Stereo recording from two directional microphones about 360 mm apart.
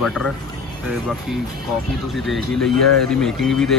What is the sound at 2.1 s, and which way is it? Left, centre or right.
Speech, centre.